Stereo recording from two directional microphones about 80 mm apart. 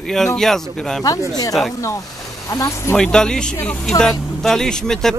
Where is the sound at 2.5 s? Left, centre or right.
Left.